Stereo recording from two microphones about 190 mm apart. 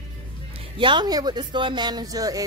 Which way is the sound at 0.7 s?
25° right (ahead or behind).